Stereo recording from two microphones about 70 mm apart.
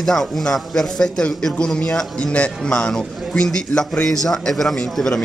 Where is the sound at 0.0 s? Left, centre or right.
Centre.